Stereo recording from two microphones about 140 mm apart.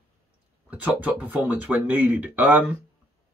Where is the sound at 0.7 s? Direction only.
10° right (ahead or behind).